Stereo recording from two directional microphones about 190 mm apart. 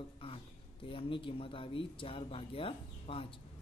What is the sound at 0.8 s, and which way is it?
Speech, 30° left (ahead or behind).